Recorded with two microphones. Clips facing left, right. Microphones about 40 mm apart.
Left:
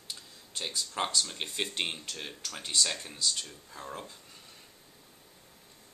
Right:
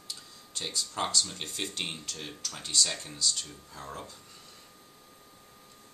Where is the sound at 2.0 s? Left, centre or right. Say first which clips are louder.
Even; centre.